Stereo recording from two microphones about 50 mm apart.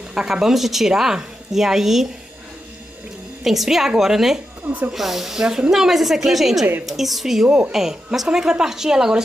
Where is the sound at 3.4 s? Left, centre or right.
Centre.